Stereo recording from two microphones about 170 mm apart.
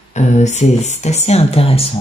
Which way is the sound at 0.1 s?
45° left (ahead or behind).